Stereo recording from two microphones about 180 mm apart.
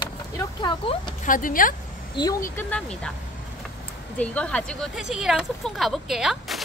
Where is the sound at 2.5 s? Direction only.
5° left (ahead or behind).